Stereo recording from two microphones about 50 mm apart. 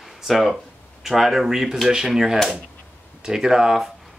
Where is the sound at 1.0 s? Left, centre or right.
Centre.